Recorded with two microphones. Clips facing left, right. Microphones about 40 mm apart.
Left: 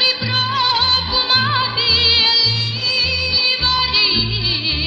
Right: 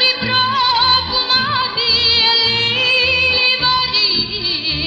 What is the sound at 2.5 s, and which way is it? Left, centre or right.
Music, right.